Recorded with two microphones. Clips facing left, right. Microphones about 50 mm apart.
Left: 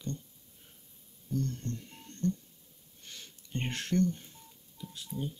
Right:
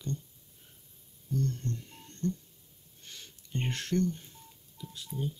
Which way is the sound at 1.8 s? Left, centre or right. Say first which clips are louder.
Even; centre.